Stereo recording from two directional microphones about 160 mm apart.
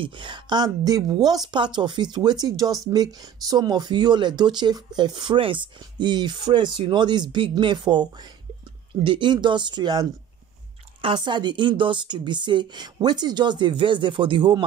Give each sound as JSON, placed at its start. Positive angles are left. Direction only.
{"t": 0.0, "sound": "speech", "side_deg": -30}